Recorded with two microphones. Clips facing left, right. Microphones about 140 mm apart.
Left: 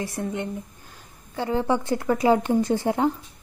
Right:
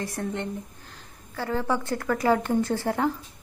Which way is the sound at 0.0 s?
10° left (ahead or behind).